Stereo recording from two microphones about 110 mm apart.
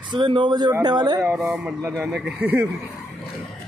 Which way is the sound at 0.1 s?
45° right (ahead or behind).